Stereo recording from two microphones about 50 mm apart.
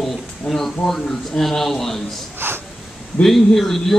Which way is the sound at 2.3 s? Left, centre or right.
Right.